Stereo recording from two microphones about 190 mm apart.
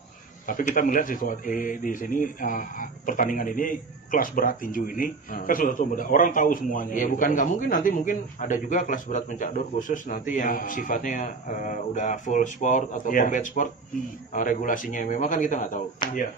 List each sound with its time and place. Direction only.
0.5 s a man's voice: 45° left (ahead or behind)
16.0 s speech: 25° left (ahead or behind)